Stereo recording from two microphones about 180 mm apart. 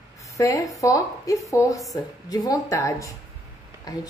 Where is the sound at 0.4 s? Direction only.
20° left (ahead or behind).